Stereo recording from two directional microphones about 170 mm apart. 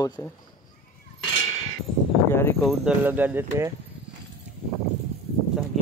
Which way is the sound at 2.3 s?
15° left (ahead or behind).